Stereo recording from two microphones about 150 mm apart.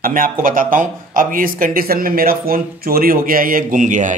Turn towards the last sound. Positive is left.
turn(degrees=-55)  # may be behind; listen again after turning